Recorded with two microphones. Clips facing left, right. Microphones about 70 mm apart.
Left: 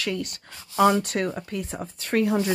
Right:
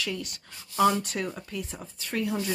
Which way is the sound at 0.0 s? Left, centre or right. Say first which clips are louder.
Left 5 dB; left.